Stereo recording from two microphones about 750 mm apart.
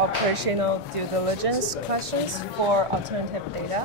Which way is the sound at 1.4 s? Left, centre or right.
Right.